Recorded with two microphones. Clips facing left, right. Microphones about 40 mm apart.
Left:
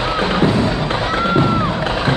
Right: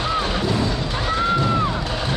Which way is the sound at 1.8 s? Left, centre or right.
Left.